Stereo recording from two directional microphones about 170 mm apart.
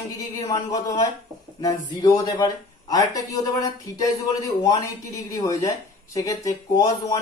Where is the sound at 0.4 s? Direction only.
20° left (ahead or behind).